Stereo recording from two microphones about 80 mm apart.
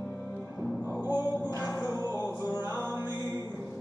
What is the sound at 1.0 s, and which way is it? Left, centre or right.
Music, right.